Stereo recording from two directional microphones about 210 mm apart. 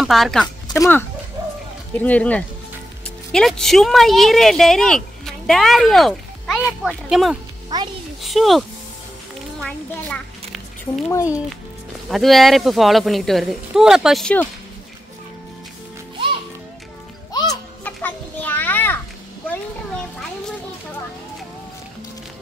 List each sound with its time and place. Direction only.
0.0 s speech: centre (ahead or behind)
0.7 s speech: 15° left (ahead or behind)
7.7 s a child's voice: 15° right (ahead or behind)
8.2 s speech: centre (ahead or behind)
9.6 s a sound: 5° left (ahead or behind)
11.1 s speech: 15° left (ahead or behind)
12.1 s speech: centre (ahead or behind)
17.5 s children playing: 10° left (ahead or behind)